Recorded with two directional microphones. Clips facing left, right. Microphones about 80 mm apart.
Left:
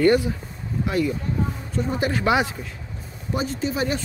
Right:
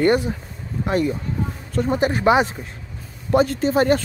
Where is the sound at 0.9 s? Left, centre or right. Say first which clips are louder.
Right 3 dB; right.